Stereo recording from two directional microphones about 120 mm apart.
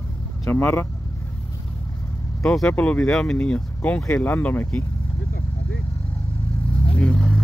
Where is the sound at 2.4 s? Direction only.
5° left (ahead or behind).